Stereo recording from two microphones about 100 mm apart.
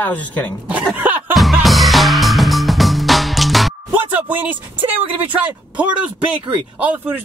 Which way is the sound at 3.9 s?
15° right (ahead or behind).